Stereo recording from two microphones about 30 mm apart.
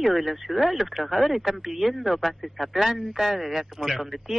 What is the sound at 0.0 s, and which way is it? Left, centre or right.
Speech, centre.